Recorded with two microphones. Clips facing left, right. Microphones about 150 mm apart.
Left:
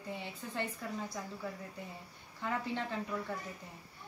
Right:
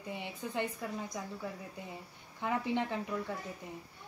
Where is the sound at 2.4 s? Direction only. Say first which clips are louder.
Right 4 dB; 15° right (ahead or behind).